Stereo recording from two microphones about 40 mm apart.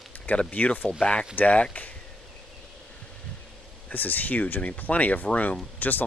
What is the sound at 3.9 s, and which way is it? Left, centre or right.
Speech, left.